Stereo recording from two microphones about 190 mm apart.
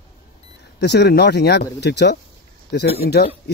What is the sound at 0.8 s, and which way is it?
Speech, 60° left (ahead or behind).